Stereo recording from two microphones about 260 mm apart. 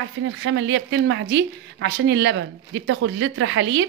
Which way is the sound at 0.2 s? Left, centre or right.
Right.